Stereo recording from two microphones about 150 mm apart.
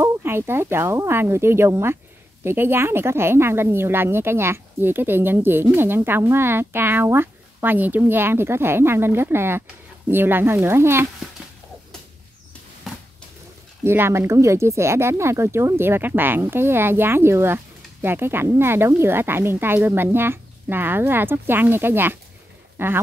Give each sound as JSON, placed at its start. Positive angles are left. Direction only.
{"t": 0.0, "sound": "speech", "side_deg": -15}
{"t": 12.9, "sound": "a sound", "side_deg": 0}
{"t": 13.8, "sound": "speech", "side_deg": -15}